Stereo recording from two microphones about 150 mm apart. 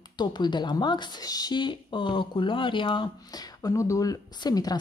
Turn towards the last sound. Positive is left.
turn(degrees=25)  # may be behind; listen again after turning